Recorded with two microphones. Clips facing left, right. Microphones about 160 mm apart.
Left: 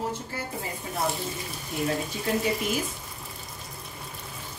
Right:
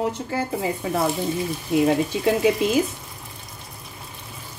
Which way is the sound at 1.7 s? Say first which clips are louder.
Right 11 dB; 90° right.